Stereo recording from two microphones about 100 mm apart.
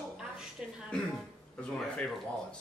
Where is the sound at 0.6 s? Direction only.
5° right (ahead or behind).